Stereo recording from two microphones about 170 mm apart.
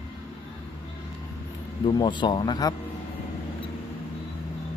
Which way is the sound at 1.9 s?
25° left (ahead or behind).